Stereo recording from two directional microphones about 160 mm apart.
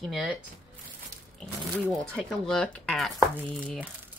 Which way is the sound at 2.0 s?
5° left (ahead or behind).